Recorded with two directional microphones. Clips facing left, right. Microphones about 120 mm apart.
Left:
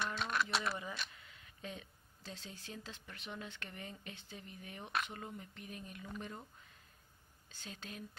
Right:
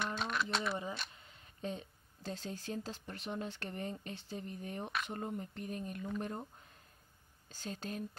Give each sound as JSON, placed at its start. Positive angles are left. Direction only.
{"t": 0.6, "sound": "speech", "side_deg": -25}
{"t": 7.4, "sound": "speech", "side_deg": -40}